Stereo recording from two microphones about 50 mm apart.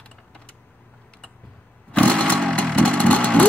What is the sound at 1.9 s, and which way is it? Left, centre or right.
Chainsaw, left.